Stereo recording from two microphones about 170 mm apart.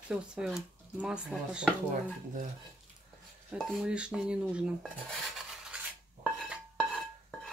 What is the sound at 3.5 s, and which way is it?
Speech, centre (ahead or behind).